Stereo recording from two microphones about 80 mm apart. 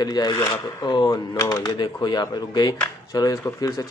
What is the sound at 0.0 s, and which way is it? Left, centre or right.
Speech, left.